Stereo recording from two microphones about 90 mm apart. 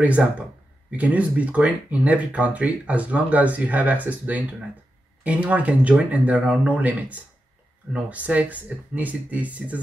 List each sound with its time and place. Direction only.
0.0 s speech: 15° right (ahead or behind)